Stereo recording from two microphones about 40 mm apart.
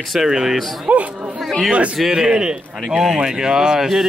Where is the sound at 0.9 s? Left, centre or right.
Right.